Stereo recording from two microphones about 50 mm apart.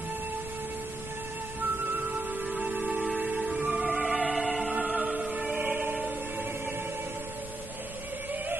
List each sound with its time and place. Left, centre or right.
2.0 s music: right
3.3 s music: centre
4.7 s music: centre
6.0 s music: right